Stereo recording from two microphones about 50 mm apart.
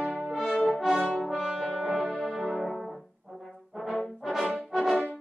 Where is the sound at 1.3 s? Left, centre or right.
Centre.